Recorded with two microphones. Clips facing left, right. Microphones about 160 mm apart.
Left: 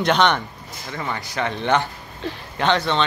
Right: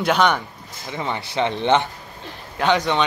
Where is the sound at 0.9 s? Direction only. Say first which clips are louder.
Right 3 dB; 20° right (ahead or behind).